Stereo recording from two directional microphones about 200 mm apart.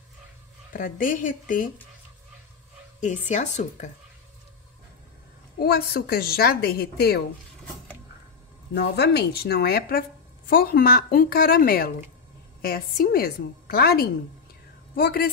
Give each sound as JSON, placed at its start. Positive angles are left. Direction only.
{"t": 0.7, "sound": "speech", "side_deg": 40}
{"t": 3.0, "sound": "speech", "side_deg": 35}
{"t": 5.6, "sound": "a woman's voice", "side_deg": 50}
{"t": 8.7, "sound": "a woman's voice", "side_deg": 55}